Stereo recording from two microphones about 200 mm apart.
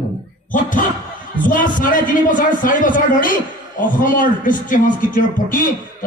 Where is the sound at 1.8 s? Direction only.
40° left (ahead or behind).